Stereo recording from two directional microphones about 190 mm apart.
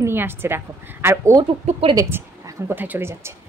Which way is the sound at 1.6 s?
30° right (ahead or behind).